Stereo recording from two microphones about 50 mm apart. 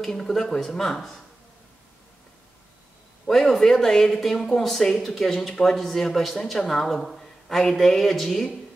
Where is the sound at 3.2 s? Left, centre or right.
Centre.